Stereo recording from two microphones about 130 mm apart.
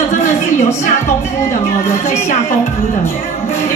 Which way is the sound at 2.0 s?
65° left (ahead or behind).